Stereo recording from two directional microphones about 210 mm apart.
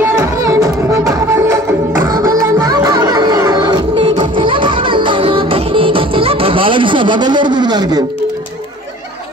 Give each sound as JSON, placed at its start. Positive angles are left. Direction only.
{"t": 0.0, "sound": "music", "side_deg": -15}